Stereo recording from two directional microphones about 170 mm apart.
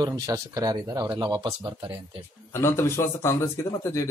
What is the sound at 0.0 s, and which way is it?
Speech, 20° right (ahead or behind).